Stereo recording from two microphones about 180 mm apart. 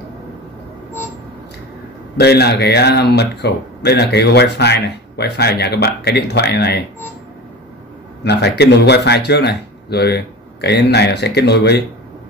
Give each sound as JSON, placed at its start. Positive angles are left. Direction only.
{"t": 2.1, "sound": "speech", "side_deg": 65}
{"t": 8.2, "sound": "a man's voice", "side_deg": 70}